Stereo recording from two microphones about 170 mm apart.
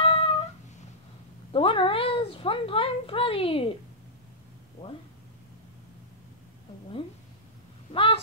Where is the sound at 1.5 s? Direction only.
30° left (ahead or behind).